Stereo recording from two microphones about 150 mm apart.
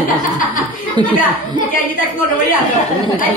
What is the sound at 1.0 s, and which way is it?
Speech, 30° right (ahead or behind).